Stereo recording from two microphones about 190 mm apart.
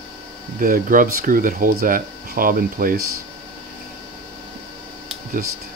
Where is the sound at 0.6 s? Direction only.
45° right (ahead or behind).